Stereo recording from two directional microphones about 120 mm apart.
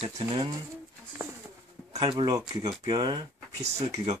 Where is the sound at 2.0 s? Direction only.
35° right (ahead or behind).